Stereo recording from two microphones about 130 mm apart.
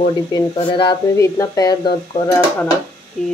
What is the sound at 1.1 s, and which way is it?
Speech, 25° left (ahead or behind).